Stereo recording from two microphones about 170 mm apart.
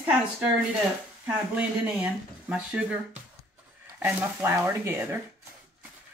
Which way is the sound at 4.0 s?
10° right (ahead or behind).